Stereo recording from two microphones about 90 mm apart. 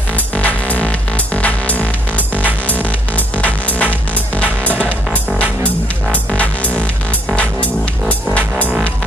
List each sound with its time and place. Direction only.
0.4 s music: 15° left (ahead or behind)